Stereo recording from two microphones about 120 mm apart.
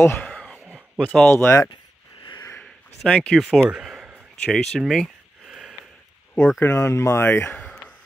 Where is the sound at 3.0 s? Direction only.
5° left (ahead or behind).